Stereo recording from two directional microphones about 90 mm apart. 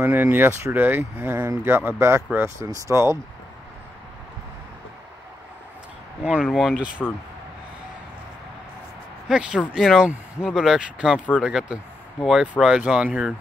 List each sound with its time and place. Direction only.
0.0 s speech: 20° right (ahead or behind)
6.2 s speech: 10° right (ahead or behind)
7.0 s speech: 10° left (ahead or behind)
9.3 s speech: 10° right (ahead or behind)